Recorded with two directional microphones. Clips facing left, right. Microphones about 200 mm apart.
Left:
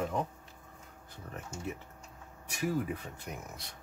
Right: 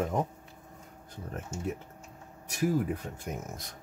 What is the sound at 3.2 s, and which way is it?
Speech, 45° right (ahead or behind).